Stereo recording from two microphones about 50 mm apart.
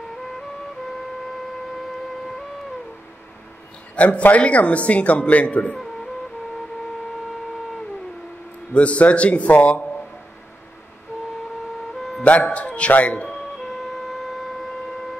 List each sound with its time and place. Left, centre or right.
3.9 s a man's voice: left
8.7 s a man's voice: left
11.9 s a sound: centre
12.2 s a man's voice: left
13.3 s music: centre